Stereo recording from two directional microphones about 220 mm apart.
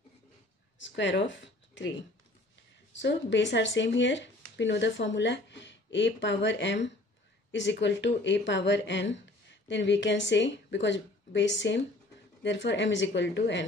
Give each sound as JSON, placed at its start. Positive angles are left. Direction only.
{"t": 0.7, "sound": "speech", "side_deg": 55}
{"t": 2.9, "sound": "speech", "side_deg": 55}